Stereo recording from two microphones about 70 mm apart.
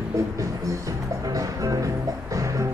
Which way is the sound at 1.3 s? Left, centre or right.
Right.